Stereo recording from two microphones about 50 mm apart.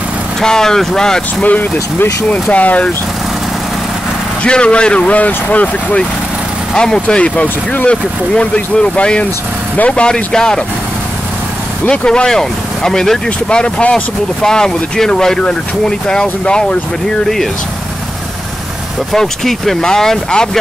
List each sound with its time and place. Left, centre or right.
0.4 s speech: centre
1.4 s speech: left
4.4 s speech: centre
6.7 s speech: centre
11.9 s speech: centre
13.5 s speech: left
14.4 s speech: centre
19.1 s speech: centre